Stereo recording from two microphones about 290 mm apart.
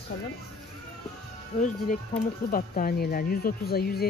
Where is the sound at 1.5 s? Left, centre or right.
Centre.